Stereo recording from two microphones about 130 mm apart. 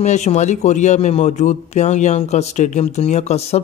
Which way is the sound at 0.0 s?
60° left (ahead or behind).